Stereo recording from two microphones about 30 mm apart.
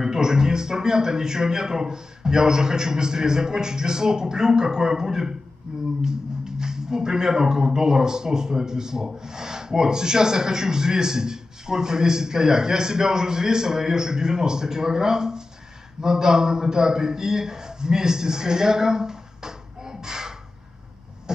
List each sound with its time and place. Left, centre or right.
0.0 s a man's voice: centre